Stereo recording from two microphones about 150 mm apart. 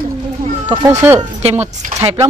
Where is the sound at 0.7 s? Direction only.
15° right (ahead or behind).